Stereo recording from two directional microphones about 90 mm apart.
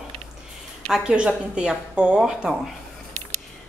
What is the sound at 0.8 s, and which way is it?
A woman's voice, 5° right (ahead or behind).